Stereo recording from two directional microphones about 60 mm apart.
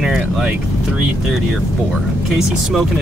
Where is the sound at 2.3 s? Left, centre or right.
Centre.